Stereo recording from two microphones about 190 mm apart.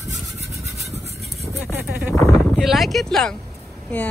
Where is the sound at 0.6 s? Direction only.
35° right (ahead or behind).